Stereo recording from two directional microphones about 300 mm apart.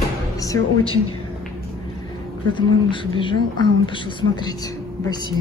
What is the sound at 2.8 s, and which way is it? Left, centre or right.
Speech, centre.